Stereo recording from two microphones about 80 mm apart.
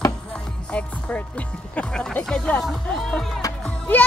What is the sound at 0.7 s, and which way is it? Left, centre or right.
Music, centre.